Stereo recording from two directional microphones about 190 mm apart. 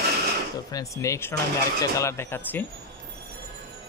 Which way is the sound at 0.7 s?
15° left (ahead or behind).